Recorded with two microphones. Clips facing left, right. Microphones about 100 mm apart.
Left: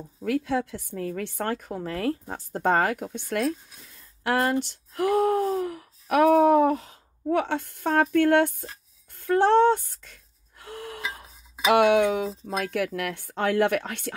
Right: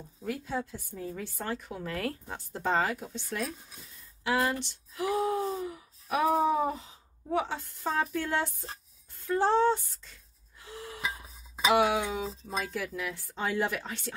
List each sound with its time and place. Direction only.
0.2 s a woman's voice: 90° left; by 1.6 s 65° left (ahead or behind)
1.6 s speech: 40° left (ahead or behind)
2.6 s speech: 55° left (ahead or behind)